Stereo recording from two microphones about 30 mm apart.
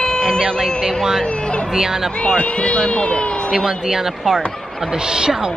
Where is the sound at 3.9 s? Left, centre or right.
Centre.